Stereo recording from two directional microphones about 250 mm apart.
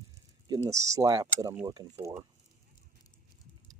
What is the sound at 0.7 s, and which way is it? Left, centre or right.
Speech, centre.